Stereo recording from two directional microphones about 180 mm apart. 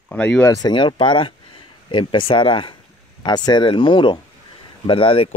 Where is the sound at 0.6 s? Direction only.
25° left (ahead or behind).